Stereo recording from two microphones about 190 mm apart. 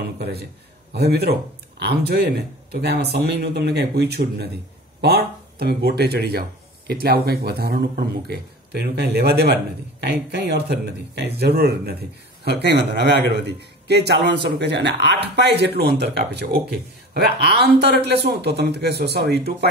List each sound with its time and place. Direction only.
0.2 s a man's voice: 60° right (ahead or behind)